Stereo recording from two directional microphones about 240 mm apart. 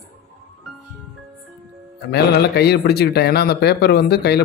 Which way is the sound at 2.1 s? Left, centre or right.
Left.